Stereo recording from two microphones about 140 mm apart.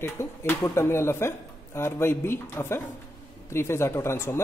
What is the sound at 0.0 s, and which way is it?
Speech, 20° left (ahead or behind).